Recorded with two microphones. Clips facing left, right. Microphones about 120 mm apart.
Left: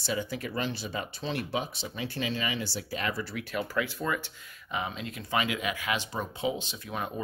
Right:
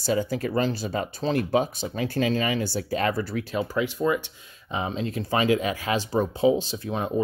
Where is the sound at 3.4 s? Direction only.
25° right (ahead or behind).